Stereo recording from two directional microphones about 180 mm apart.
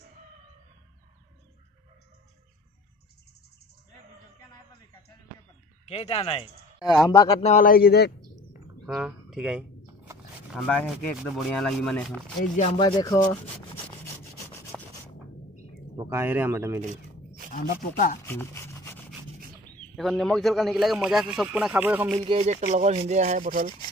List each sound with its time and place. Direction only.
5.9 s speech: 35° left (ahead or behind)
6.8 s speech: 20° left (ahead or behind)
7.4 s speech: 45° left (ahead or behind)
8.8 s speech: 5° right (ahead or behind)
10.6 s speech: 10° left (ahead or behind)
11.1 s a man's voice: centre (ahead or behind)
12.7 s speech: 25° left (ahead or behind)
14.7 s sanding: 5° right (ahead or behind)
16.0 s speech: 15° right (ahead or behind)
17.5 s speech: 50° left (ahead or behind)
18.2 s rub: 15° left (ahead or behind)
20.0 s a man's voice: centre (ahead or behind)
22.2 s speech: 35° right (ahead or behind); by 23.7 s 50° right (ahead or behind)